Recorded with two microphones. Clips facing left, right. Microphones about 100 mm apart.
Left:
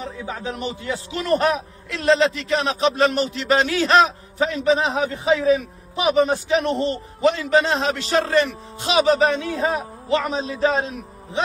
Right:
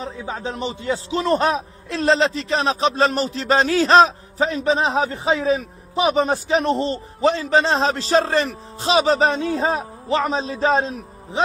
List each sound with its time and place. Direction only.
0.2 s a man's voice: 25° right (ahead or behind)